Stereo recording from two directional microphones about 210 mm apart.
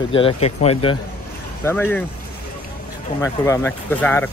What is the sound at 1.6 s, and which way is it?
Speech, 10° left (ahead or behind).